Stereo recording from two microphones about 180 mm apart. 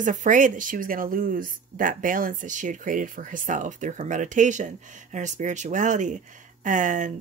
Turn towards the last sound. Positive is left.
turn(degrees=-45)  # may be behind; listen again after turning